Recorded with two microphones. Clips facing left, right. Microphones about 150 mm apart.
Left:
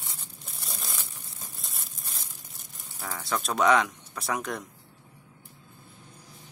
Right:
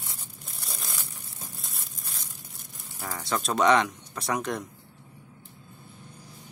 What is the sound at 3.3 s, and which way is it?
Speech, centre (ahead or behind).